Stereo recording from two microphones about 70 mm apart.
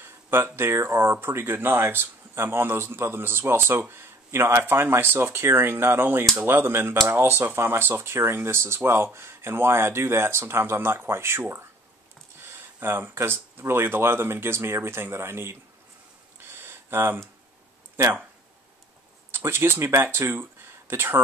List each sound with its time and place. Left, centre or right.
0.0 s speech: right
12.8 s speech: right
16.3 s a sound: right
17.9 s speech: right
19.3 s speech: right